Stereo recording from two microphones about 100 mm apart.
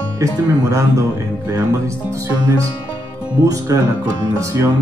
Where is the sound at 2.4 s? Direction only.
35° right (ahead or behind).